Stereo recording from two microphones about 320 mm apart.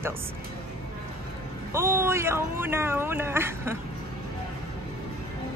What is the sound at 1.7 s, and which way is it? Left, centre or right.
Speech, centre.